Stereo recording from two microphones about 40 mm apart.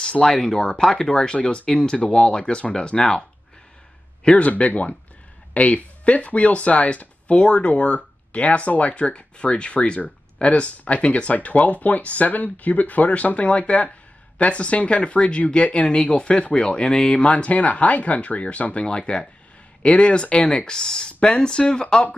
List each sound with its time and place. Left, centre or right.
0.2 s speech: centre
4.5 s speech: left